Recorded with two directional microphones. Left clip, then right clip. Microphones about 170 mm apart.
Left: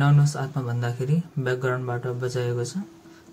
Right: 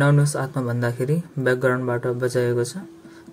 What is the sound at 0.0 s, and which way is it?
Speech, 20° right (ahead or behind).